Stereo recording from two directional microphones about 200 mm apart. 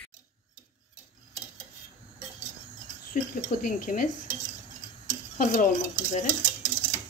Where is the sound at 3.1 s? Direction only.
40° left (ahead or behind).